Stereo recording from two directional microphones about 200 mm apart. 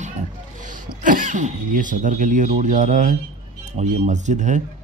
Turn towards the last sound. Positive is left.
turn(degrees=-35)  # may be behind; listen again after turning